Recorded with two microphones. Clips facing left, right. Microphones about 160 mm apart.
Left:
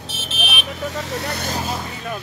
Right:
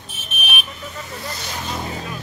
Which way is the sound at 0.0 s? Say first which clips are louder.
Left 4 dB; 90° left.